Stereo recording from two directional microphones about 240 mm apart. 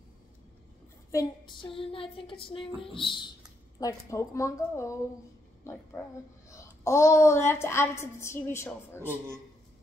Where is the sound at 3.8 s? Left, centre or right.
Centre.